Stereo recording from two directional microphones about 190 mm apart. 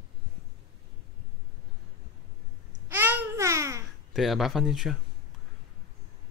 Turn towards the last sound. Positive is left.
turn(degrees=0)  # may be behind; listen again after turning